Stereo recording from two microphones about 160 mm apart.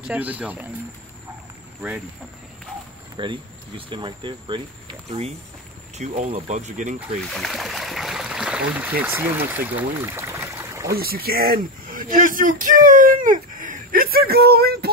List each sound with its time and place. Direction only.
0.1 s speech: 10° right (ahead or behind)
3.2 s speech: 30° right (ahead or behind); by 7.0 s 50° right (ahead or behind)
7.2 s a sound: centre (ahead or behind); by 10.9 s 20° right (ahead or behind)
10.9 s speech: 70° right (ahead or behind)